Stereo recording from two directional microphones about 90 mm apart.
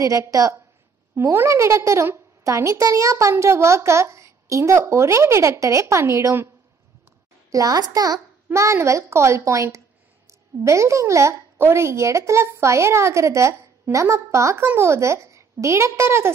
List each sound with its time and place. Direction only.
0.0 s a woman's voice: 40° right (ahead or behind)
7.5 s a child's voice: 45° right (ahead or behind)
8.5 s a woman's voice: 35° right (ahead or behind)